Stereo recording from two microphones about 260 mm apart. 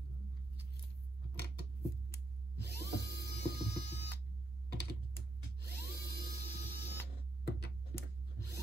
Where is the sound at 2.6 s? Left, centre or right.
Left.